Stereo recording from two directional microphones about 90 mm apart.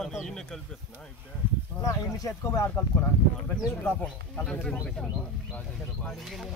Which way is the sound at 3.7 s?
15° left (ahead or behind).